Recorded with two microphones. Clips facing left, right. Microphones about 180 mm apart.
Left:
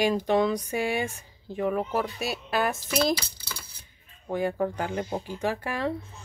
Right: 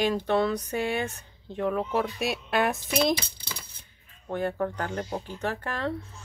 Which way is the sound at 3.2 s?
20° right (ahead or behind).